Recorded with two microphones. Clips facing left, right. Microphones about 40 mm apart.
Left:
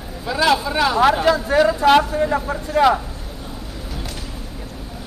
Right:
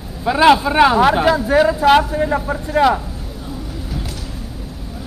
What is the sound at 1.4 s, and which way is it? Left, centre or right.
Speech, centre.